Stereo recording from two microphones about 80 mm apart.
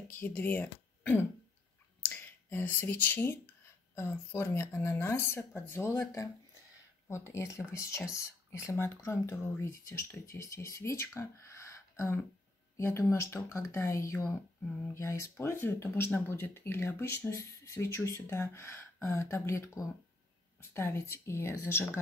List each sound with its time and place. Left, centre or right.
0.3 s speech: left
7.1 s speech: left